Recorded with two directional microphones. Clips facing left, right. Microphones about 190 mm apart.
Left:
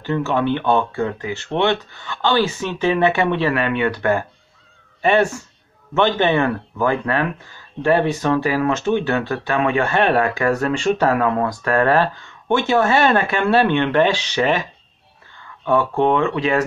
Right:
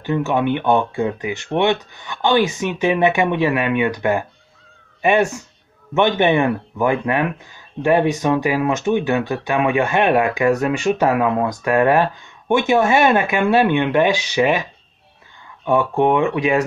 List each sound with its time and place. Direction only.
0.0 s speech: 15° right (ahead or behind)
15.6 s speech: 15° right (ahead or behind)